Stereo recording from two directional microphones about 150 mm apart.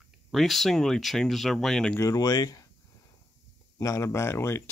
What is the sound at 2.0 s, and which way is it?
Speech, 25° left (ahead or behind).